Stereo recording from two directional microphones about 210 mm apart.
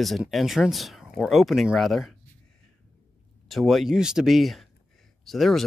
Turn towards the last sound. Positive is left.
turn(degrees=0)  # may be behind; listen again after turning